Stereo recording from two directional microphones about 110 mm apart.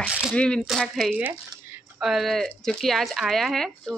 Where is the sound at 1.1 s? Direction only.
15° right (ahead or behind).